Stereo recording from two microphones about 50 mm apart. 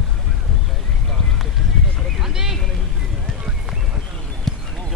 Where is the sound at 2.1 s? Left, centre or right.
Centre.